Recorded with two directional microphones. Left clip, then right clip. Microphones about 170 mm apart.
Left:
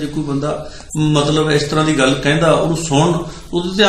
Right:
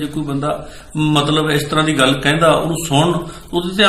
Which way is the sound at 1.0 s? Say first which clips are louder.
Even; centre (ahead or behind).